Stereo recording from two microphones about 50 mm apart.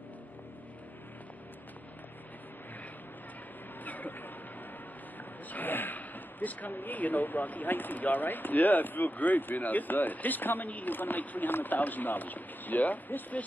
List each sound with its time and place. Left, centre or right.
3.8 s vehicle: left
5.5 s speech: left